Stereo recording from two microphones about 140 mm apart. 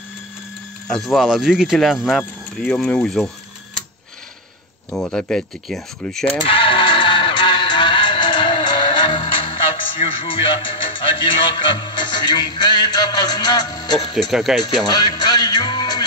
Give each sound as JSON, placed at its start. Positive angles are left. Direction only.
{"t": 0.8, "sound": "speech", "side_deg": 0}
{"t": 4.9, "sound": "speech", "side_deg": 5}
{"t": 6.4, "sound": "music", "side_deg": 40}
{"t": 14.3, "sound": "speech", "side_deg": 0}
{"t": 14.6, "sound": "music", "side_deg": 30}